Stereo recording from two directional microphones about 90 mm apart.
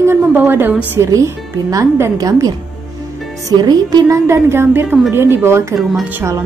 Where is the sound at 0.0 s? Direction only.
25° right (ahead or behind).